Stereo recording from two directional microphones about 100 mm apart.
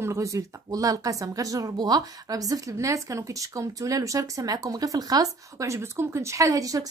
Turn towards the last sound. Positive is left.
turn(degrees=-35)  # may be behind; listen again after turning